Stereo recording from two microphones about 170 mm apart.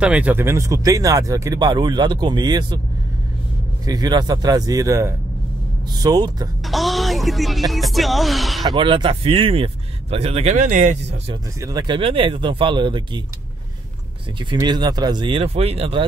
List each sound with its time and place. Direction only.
0.0 s speech: 5° right (ahead or behind); by 2.8 s 25° right (ahead or behind)
3.8 s speech: 25° right (ahead or behind)
6.6 s speech: centre (ahead or behind)
8.6 s speech: 30° right (ahead or behind)
11.6 s speech: 20° right (ahead or behind)
14.4 s speech: 25° right (ahead or behind)